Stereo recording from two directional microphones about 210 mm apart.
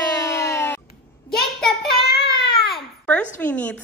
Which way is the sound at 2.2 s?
50° left (ahead or behind).